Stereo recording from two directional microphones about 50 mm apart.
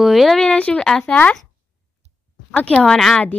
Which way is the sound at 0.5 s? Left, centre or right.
Left.